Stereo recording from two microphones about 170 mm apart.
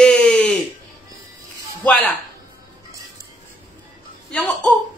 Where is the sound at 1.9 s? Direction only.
5° left (ahead or behind).